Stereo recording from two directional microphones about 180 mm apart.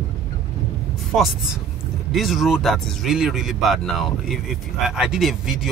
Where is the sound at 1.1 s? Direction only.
Centre (ahead or behind).